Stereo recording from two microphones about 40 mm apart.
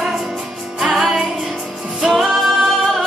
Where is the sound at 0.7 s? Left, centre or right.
Centre.